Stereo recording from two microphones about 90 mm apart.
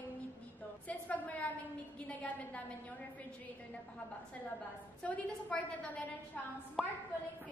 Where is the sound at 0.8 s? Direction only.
15° left (ahead or behind).